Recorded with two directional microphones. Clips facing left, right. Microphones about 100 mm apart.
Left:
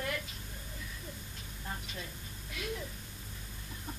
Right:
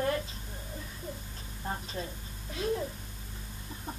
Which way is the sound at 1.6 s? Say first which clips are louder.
Right 7 dB; 35° right (ahead or behind).